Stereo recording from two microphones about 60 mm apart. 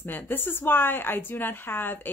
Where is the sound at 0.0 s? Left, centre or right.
Left.